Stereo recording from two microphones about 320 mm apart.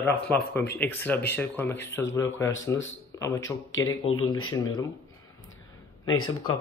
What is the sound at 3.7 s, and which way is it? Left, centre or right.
Speech, left.